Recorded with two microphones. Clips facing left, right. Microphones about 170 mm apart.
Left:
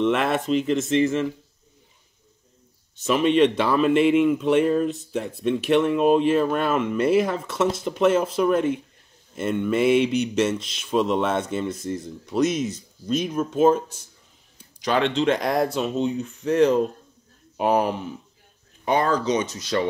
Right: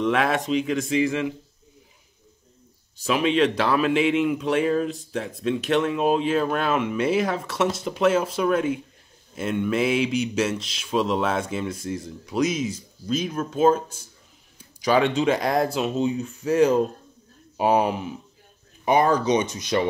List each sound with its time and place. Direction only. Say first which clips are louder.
0.0 s speech: left 1 dB; centre (ahead or behind)
3.1 s speech: left 2 dB; centre (ahead or behind); by 19.9 s 15° right (ahead or behind)